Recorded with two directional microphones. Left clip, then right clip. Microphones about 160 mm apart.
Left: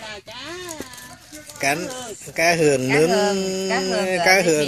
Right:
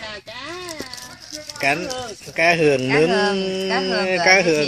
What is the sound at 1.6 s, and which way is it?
Speech, 10° left (ahead or behind).